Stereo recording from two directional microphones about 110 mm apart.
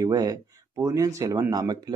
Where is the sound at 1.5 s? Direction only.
35° right (ahead or behind).